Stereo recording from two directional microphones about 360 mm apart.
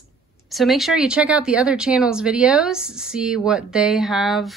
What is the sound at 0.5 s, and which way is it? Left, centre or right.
Speech, centre.